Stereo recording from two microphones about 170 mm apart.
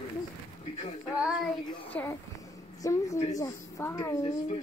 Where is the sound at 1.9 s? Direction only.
10° left (ahead or behind).